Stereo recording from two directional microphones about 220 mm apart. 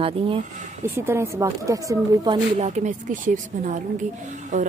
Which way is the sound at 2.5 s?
30° right (ahead or behind).